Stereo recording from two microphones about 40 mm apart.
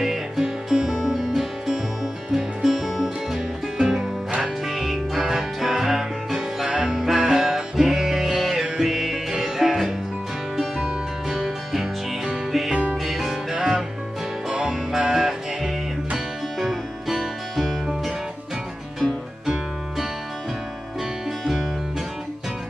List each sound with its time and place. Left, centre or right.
0.0 s music: centre
3.8 s music: centre
14.5 s music: right
14.9 s music: centre